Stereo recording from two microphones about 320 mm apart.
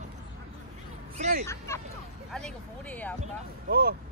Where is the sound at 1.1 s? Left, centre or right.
Right.